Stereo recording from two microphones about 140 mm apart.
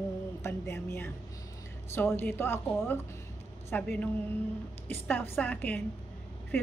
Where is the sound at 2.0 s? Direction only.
15° left (ahead or behind).